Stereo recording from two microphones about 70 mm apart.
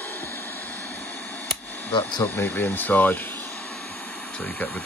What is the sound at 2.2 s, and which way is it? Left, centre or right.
Speech, left.